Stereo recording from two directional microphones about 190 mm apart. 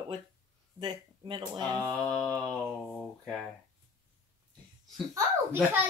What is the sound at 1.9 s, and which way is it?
Humming, 5° left (ahead or behind).